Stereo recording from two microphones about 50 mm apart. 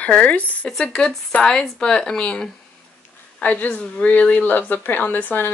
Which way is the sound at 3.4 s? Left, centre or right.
Left.